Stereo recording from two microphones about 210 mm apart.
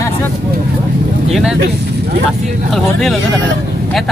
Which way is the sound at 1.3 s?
5° right (ahead or behind).